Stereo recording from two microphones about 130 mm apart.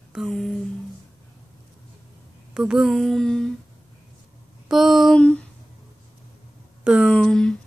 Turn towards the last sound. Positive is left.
turn(degrees=5)  # may be behind; listen again after turning